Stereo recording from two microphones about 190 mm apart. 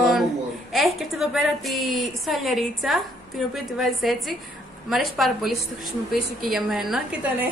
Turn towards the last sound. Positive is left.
turn(degrees=-5)  # may be behind; listen again after turning